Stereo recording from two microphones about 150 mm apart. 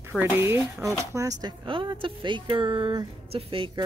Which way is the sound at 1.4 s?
35° right (ahead or behind).